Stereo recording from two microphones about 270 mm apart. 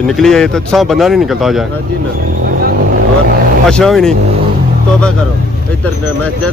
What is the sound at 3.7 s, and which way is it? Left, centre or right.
Speech, centre.